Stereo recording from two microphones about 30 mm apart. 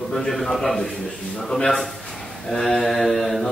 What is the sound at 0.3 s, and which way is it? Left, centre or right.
Mantra, centre.